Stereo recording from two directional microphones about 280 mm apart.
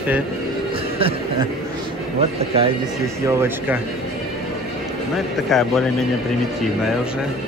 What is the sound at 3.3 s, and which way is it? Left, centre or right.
Speech, centre.